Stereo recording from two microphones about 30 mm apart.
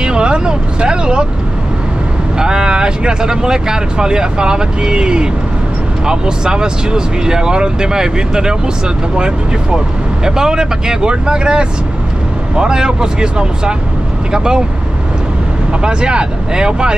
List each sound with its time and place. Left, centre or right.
0.0 s vehicle: right
2.3 s speech: right
15.8 s speech: right